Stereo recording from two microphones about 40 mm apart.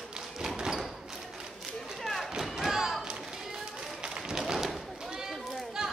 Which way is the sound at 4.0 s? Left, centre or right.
Centre.